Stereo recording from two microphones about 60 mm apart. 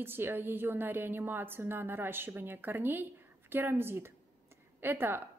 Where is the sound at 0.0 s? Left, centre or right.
Right.